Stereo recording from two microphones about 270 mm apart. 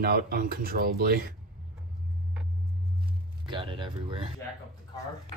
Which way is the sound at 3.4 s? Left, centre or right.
Centre.